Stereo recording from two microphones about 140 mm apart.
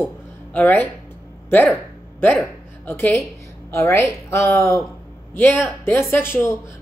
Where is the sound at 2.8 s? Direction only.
15° left (ahead or behind).